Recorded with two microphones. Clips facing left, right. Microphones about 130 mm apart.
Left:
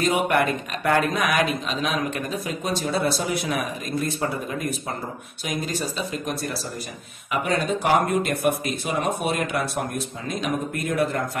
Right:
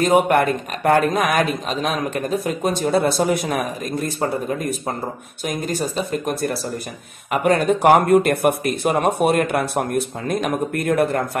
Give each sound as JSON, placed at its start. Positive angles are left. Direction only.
{"t": 0.0, "sound": "speech", "side_deg": -45}